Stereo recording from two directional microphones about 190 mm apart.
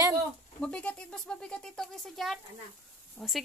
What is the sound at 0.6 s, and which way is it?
Speech, 5° left (ahead or behind).